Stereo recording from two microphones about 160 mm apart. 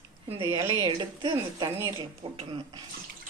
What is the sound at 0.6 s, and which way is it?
A woman's voice, 25° right (ahead or behind).